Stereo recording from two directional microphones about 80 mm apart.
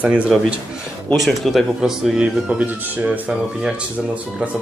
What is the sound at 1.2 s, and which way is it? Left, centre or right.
Speech, centre.